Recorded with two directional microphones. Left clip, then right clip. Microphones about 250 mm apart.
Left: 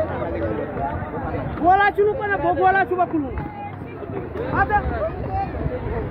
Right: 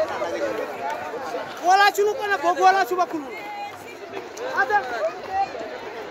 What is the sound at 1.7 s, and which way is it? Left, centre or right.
Speech, right.